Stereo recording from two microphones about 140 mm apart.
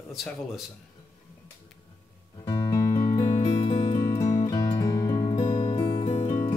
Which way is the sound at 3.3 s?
45° left (ahead or behind).